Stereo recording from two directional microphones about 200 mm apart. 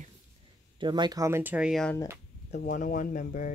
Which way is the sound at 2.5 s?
40° left (ahead or behind).